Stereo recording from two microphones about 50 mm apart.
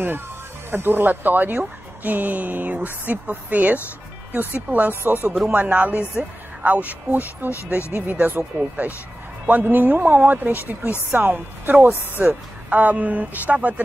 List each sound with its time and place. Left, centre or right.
0.7 s speech: right
4.3 s speech: right
4.6 s speech: right
5.0 s speech: right
5.5 s speech: right
8.5 s speech: right